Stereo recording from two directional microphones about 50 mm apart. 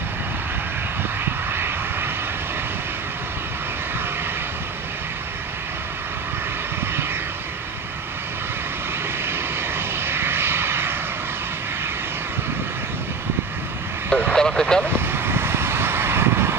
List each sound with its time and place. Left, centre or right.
1.2 s vehicle: right
9.2 s vehicle: right
14.1 s vehicle: centre
14.9 s vehicle: right